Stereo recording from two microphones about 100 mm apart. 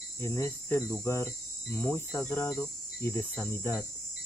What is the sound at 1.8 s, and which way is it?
Speech, 15° left (ahead or behind).